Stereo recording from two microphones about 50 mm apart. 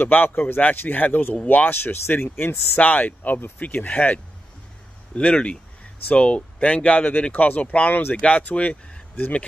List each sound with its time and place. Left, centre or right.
0.0 s speech: left
1.7 s speech: left
2.8 s speech: left